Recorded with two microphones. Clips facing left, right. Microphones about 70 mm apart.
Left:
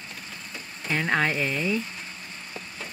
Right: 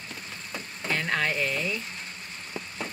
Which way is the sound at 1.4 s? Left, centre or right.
Centre.